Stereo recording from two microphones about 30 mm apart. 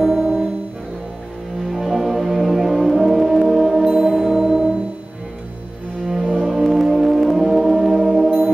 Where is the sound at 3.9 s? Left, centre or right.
Right.